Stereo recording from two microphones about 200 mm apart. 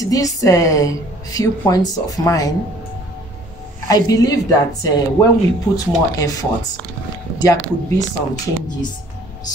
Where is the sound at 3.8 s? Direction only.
20° left (ahead or behind).